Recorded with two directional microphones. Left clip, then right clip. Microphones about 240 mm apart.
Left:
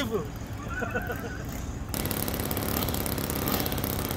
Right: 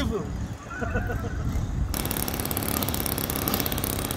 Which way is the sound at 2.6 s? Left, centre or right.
Right.